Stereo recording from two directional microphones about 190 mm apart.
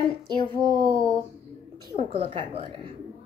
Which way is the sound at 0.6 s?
20° right (ahead or behind).